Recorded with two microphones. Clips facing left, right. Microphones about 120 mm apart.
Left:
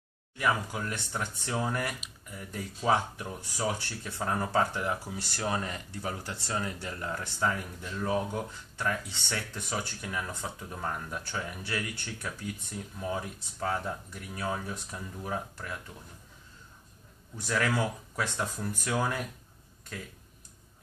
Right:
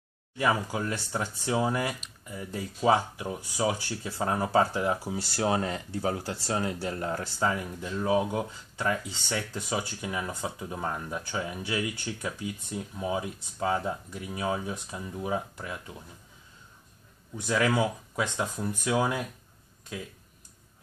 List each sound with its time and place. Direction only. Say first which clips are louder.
0.4 s speech: right 3 dB; 25° right (ahead or behind)
1.5 s speech: right 5 dB; 20° right (ahead or behind)
8.1 s speech: right 5 dB; 10° right (ahead or behind)
17.5 s speech: right 4 dB; 15° right (ahead or behind)